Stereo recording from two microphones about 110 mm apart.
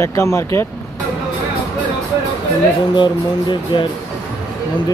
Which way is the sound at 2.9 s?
45° left (ahead or behind).